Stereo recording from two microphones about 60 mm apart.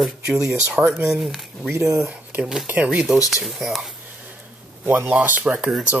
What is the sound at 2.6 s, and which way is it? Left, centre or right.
Speech, right.